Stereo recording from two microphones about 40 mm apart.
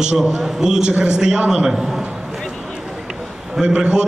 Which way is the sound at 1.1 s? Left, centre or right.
Centre.